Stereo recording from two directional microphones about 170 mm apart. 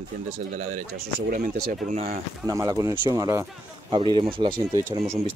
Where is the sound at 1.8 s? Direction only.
40° right (ahead or behind).